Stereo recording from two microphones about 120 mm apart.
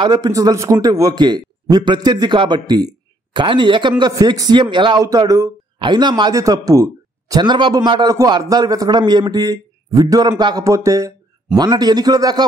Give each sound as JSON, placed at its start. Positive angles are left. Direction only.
{"t": 0.0, "sound": "speech", "side_deg": -35}